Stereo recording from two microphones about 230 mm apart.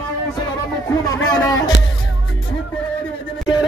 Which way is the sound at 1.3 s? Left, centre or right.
Centre.